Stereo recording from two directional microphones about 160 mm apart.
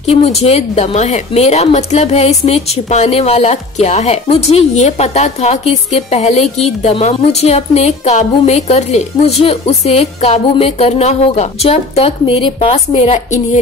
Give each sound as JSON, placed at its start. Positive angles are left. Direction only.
{"t": 0.0, "sound": "a woman's voice", "side_deg": 40}